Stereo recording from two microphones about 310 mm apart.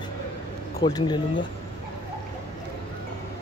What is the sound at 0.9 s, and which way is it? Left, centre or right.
Speech, centre.